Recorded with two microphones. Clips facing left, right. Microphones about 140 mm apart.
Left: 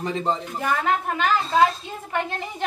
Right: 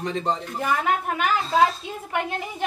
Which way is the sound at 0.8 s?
10° right (ahead or behind).